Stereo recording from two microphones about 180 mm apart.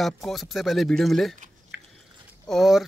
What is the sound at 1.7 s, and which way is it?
Biting, 90° right.